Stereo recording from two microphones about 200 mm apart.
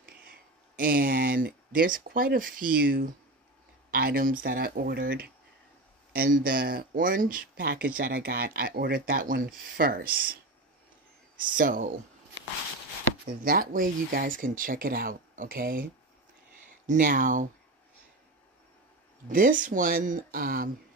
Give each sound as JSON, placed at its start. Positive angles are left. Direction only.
{"t": 0.0, "sound": "speech", "side_deg": -45}
{"t": 11.5, "sound": "speech", "side_deg": -45}
{"t": 13.4, "sound": "speech", "side_deg": -45}
{"t": 19.2, "sound": "speech", "side_deg": -40}